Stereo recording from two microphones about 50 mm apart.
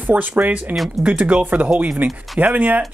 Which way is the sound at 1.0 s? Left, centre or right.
Right.